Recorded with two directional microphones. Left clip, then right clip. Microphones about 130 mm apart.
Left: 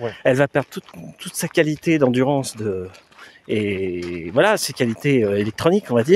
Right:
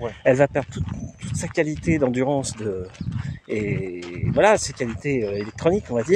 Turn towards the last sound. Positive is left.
turn(degrees=55)  # may be behind; listen again after turning